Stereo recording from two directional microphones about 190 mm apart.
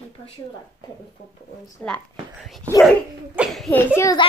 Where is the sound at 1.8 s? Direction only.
Centre (ahead or behind).